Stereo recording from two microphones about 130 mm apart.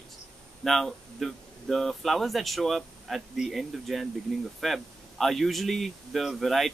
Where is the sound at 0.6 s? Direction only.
Centre (ahead or behind).